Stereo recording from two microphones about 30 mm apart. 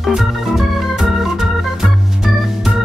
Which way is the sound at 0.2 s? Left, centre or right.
Centre.